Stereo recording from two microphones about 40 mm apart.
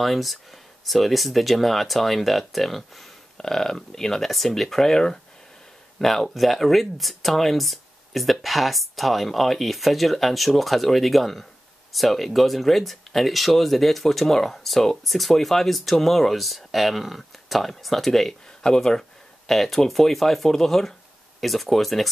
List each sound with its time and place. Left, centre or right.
0.0 s speech: centre
4.9 s speech: centre
5.9 s speech: centre